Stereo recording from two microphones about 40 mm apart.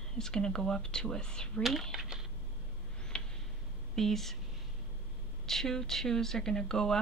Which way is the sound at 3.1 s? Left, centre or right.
Left.